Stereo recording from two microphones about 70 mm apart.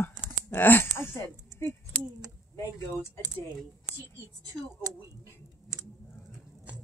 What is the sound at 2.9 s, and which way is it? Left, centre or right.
Speech, right.